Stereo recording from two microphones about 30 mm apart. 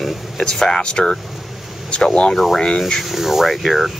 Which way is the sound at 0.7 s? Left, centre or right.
Left.